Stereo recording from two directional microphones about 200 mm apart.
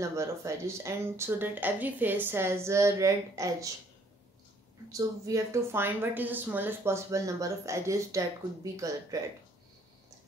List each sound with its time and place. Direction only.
0.0 s speech: 15° right (ahead or behind)
4.9 s speech: 15° right (ahead or behind)